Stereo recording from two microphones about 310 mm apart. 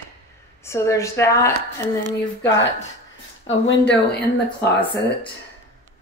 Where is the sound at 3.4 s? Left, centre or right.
Left.